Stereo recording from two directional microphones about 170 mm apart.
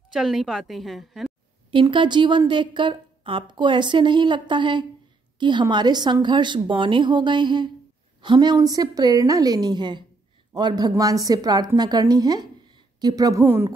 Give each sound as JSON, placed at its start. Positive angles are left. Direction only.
{"t": 0.1, "sound": "a woman's voice", "side_deg": 0}
{"t": 1.7, "sound": "a woman's voice", "side_deg": -30}